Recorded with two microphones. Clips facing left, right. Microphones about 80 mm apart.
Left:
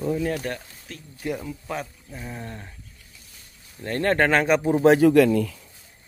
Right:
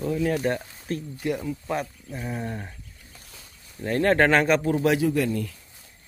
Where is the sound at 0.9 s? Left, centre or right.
Right.